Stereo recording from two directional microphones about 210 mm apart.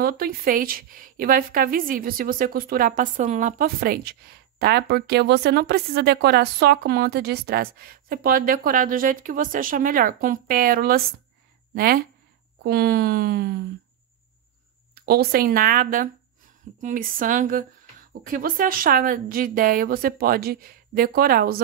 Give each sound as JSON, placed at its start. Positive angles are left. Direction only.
{"t": 0.0, "sound": "a woman's voice", "side_deg": -45}
{"t": 15.0, "sound": "a woman's voice", "side_deg": -45}